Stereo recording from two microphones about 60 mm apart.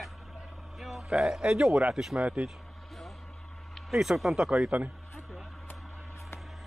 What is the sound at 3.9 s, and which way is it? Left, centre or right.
Speech, centre.